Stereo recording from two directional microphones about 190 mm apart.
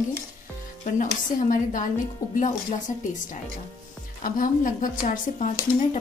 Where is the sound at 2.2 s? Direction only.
15° left (ahead or behind).